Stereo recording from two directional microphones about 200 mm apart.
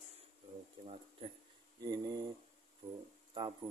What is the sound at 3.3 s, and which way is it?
Speech, 25° right (ahead or behind).